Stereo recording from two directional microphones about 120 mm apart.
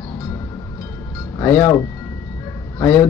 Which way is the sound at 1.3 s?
25° left (ahead or behind).